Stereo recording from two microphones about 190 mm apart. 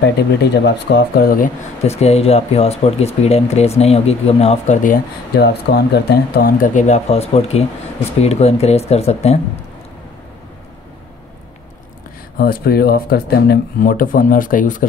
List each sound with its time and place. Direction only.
0.0 s speech: 65° left (ahead or behind)
1.3 s speech: 40° left (ahead or behind)
12.4 s speech: 50° left (ahead or behind)